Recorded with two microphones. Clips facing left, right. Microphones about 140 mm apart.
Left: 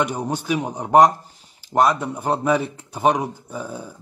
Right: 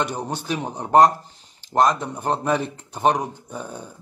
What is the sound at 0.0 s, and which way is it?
A man's voice, 10° left (ahead or behind).